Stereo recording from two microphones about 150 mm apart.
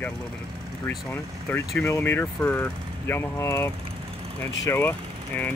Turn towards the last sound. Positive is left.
turn(degrees=10)  # may be behind; listen again after turning